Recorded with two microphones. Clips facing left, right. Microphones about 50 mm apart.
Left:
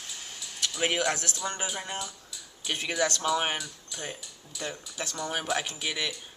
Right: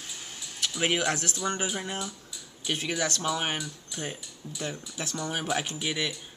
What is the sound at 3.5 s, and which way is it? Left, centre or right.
Speech, centre.